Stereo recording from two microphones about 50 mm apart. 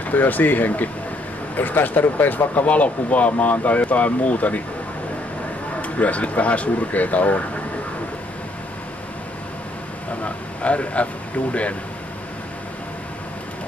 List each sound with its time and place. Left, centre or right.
0.0 s speech: left
5.8 s speech: left
10.2 s speech: left